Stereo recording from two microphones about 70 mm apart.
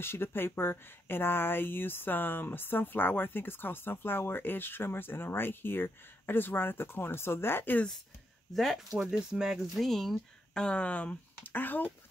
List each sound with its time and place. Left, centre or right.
0.0 s speech: left
8.5 s speech: centre; by 11.9 s left